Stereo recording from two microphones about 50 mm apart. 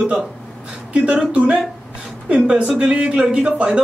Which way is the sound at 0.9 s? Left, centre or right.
Right.